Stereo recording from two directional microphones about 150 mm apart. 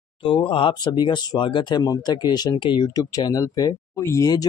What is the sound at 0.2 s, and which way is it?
Speech, 35° left (ahead or behind).